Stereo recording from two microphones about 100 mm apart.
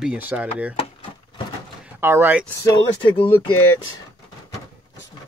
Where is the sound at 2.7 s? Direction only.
55° left (ahead or behind).